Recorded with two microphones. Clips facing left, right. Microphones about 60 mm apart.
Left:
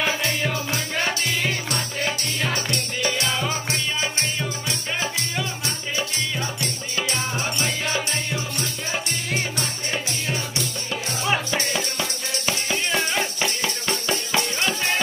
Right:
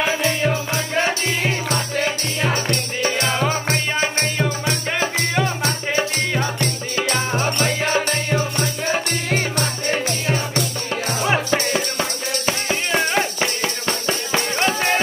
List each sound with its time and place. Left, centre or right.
0.2 s music: right
11.2 s music: right